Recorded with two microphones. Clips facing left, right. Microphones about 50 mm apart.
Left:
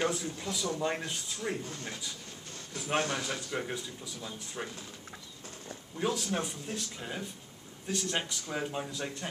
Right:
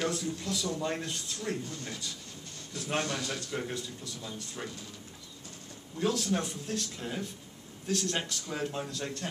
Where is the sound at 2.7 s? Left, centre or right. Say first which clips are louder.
Left 1 dB; centre.